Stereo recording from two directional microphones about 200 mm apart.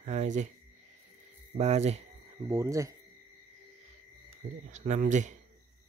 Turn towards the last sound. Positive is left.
turn(degrees=-40)  # may be behind; listen again after turning